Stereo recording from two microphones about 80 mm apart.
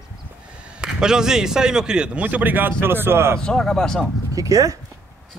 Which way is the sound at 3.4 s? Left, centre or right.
Centre.